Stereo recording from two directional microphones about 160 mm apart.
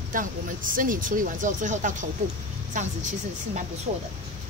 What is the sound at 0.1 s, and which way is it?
Speech, 60° right (ahead or behind).